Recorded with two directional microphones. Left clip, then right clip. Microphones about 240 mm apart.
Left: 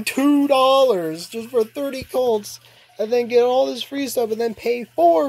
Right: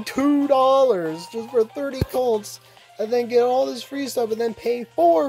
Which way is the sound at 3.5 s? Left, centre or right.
Centre.